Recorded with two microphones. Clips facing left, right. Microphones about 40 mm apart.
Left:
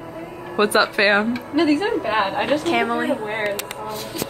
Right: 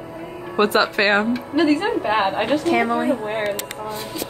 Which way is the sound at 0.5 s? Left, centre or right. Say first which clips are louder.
Even; centre.